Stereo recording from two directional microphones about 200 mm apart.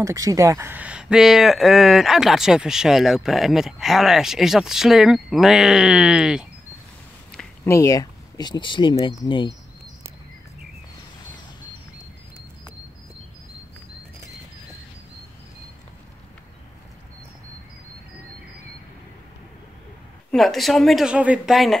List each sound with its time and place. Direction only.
0.0 s speech: 15° right (ahead or behind)
7.6 s speech: 15° left (ahead or behind)
20.2 s speech: centre (ahead or behind)